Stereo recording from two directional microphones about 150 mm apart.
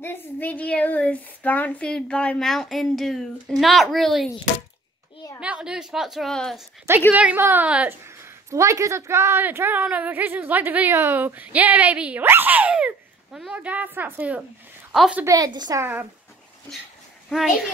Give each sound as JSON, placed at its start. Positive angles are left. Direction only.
{"t": 0.0, "sound": "speech", "side_deg": 15}
{"t": 5.4, "sound": "speech", "side_deg": -5}
{"t": 7.2, "sound": "a woman's voice", "side_deg": -10}
{"t": 8.5, "sound": "a woman's voice", "side_deg": -20}
{"t": 15.2, "sound": "a woman's voice", "side_deg": -25}
{"t": 15.8, "sound": "a woman's voice", "side_deg": -15}
{"t": 17.3, "sound": "speech", "side_deg": 0}